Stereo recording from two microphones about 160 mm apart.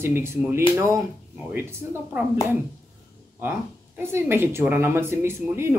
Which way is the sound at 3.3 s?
15° right (ahead or behind).